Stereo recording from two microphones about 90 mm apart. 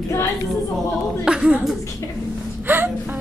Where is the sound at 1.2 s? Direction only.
10° right (ahead or behind).